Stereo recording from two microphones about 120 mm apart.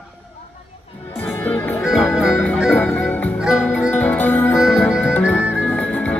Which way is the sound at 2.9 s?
10° left (ahead or behind).